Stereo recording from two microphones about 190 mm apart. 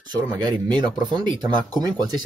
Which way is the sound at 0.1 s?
20° right (ahead or behind).